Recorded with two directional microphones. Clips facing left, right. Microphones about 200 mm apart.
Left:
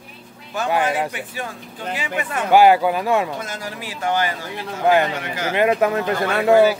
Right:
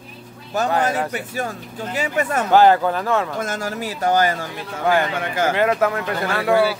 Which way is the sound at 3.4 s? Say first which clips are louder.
Right 5 dB; 45° right (ahead or behind).